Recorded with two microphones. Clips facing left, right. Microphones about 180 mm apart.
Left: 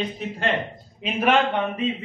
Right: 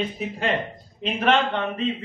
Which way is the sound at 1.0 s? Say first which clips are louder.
Left 1 dB; 10° left (ahead or behind).